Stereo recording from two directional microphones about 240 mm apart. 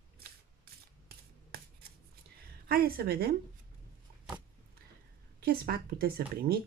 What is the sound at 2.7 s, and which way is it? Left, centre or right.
Speech, right.